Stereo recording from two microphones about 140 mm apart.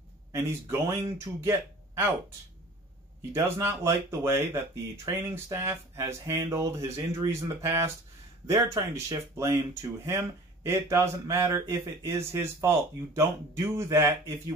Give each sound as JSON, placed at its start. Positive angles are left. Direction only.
{"t": 0.3, "sound": "speech", "side_deg": -20}
{"t": 3.3, "sound": "speech", "side_deg": -15}